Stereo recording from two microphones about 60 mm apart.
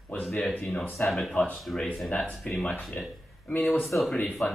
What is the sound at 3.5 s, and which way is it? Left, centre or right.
Speech, left.